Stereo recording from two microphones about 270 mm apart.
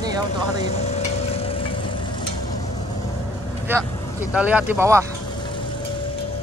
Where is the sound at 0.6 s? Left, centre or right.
Left.